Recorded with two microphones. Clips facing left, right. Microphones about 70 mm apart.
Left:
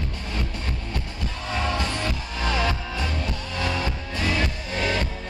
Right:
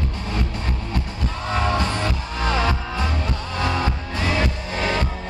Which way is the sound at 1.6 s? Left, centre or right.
Right.